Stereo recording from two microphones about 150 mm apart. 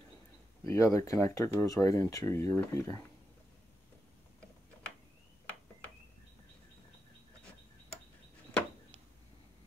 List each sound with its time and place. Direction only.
0.7 s speech: 20° left (ahead or behind)